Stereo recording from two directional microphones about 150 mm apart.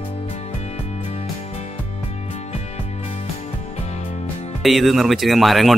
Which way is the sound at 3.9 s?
45° left (ahead or behind).